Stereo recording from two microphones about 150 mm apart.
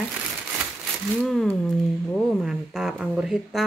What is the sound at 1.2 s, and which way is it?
Speech, centre (ahead or behind).